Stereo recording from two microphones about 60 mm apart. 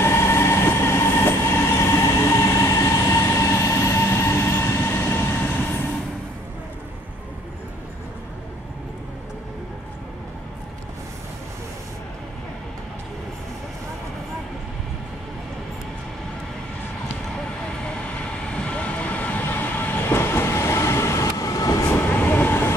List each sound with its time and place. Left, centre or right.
0.0 s train: left
5.4 s train: left
18.5 s train: centre; by 21.8 s left
22.1 s train: left